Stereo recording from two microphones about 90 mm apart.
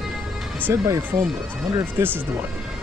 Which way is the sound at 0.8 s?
35° right (ahead or behind).